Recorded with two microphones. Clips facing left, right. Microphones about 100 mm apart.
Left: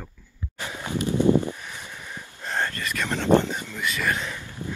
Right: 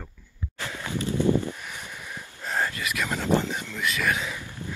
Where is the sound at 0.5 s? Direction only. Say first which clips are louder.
Left 2 dB; 20° left (ahead or behind).